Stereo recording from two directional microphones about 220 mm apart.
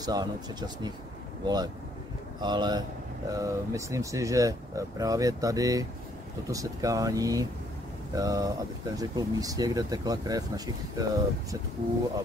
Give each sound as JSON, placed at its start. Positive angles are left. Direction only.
{"t": 0.0, "sound": "speech", "side_deg": -20}